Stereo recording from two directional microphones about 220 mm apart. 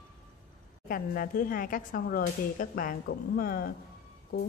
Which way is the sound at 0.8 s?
40° left (ahead or behind).